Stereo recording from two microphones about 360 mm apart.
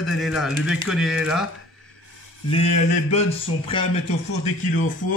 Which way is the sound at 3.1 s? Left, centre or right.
Centre.